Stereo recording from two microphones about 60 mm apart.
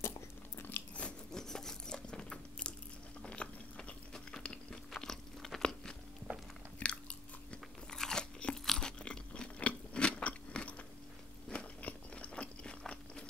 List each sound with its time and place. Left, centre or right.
0.6 s biting: left
0.9 s biting: centre
1.4 s biting: centre
6.8 s chewing: centre
8.0 s crunch: centre
11.8 s a sound: left